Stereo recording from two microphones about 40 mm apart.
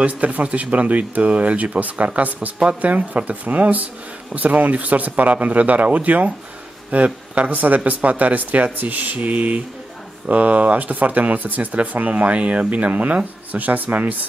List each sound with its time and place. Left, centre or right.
0.0 s speech: right